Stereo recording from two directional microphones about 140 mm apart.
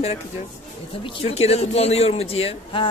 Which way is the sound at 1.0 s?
45° left (ahead or behind).